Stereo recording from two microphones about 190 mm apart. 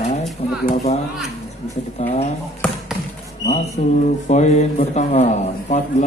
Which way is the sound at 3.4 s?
35° left (ahead or behind).